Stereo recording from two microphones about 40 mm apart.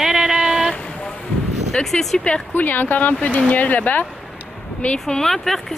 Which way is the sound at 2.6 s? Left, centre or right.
Left.